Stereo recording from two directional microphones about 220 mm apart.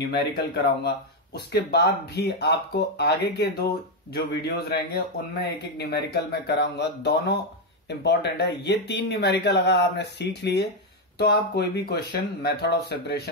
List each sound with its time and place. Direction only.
0.4 s speech: 45° left (ahead or behind)